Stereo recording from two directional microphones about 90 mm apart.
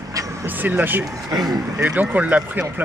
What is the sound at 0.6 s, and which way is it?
Speech, 20° right (ahead or behind).